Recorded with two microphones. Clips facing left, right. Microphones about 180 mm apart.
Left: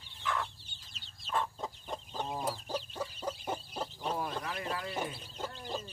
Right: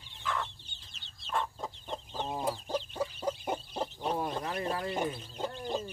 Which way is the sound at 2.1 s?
25° right (ahead or behind).